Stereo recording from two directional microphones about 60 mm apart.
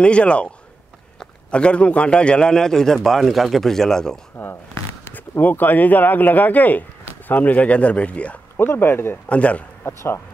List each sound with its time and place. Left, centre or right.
0.0 s a man's voice: centre
5.4 s speech: left
8.5 s speech: left
9.3 s speech: left
9.8 s speech: left